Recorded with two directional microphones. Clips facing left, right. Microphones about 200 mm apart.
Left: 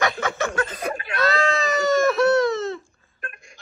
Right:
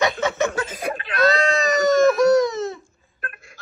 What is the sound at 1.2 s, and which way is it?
Baby cry, 20° right (ahead or behind).